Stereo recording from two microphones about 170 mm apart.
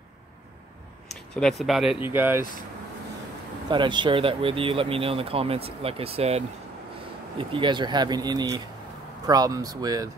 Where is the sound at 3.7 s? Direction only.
25° right (ahead or behind).